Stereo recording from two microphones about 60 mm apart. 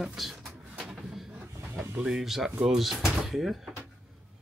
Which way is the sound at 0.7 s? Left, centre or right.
Centre.